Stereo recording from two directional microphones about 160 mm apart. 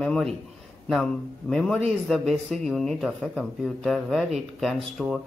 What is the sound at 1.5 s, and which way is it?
Speech, 5° left (ahead or behind).